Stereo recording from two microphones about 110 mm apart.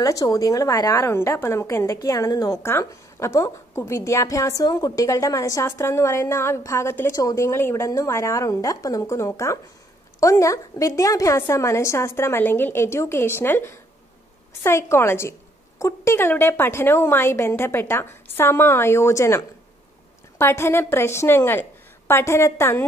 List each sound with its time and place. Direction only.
0.0 s a woman's voice: 30° left (ahead or behind)